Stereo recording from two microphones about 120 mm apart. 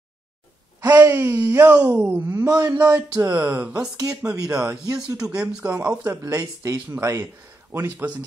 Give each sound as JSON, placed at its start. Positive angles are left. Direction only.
{"t": 0.7, "sound": "speech", "side_deg": -15}
{"t": 6.0, "sound": "speech", "side_deg": -25}